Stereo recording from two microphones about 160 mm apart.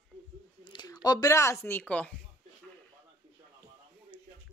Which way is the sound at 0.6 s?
25° left (ahead or behind).